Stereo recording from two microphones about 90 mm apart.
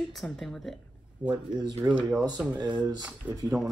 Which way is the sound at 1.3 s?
55° right (ahead or behind).